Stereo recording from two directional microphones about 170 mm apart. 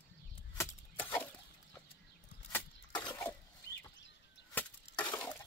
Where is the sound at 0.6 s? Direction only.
10° left (ahead or behind).